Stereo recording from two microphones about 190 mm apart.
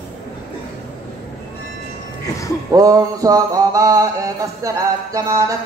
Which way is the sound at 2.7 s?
20° right (ahead or behind).